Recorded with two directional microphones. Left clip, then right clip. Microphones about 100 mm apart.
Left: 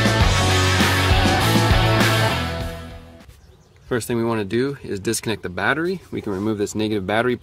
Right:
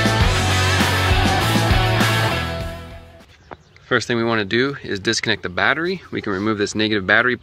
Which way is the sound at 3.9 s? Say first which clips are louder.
Right 4 dB; 20° left (ahead or behind).